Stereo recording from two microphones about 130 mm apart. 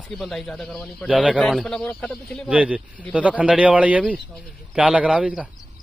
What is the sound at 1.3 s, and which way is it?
Speech, 5° left (ahead or behind).